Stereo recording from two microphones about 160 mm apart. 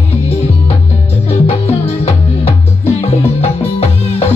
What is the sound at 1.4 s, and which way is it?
Music, 40° left (ahead or behind).